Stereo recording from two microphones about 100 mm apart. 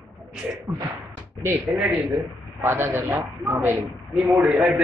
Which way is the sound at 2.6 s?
30° right (ahead or behind).